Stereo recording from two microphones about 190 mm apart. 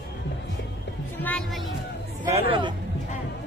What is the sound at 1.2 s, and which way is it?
Speech, 5° left (ahead or behind).